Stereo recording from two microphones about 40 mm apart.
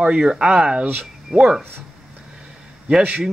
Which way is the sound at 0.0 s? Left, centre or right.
Right.